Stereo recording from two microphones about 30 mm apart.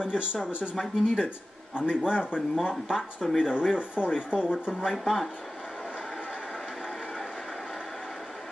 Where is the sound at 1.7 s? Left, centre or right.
Right.